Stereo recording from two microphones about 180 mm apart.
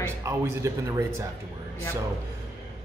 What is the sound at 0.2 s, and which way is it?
Speech, 15° right (ahead or behind).